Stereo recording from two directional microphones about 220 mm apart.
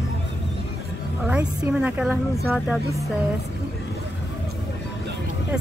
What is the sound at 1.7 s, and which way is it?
A woman's voice, 5° right (ahead or behind).